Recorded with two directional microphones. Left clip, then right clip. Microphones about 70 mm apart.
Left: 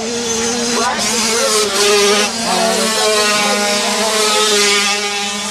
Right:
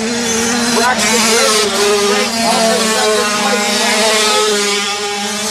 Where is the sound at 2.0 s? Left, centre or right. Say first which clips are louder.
Left 1 dB; left.